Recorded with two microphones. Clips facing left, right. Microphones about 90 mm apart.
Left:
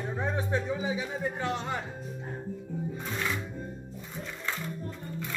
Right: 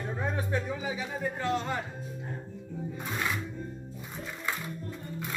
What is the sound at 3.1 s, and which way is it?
Music, 15° right (ahead or behind).